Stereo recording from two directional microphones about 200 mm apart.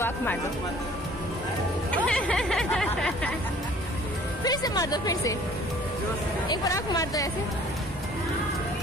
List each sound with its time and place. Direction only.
0.0 s music: 10° left (ahead or behind)
2.0 s speech: 5° left (ahead or behind)
4.5 s a woman's voice: 20° left (ahead or behind)
6.5 s speech: 20° left (ahead or behind)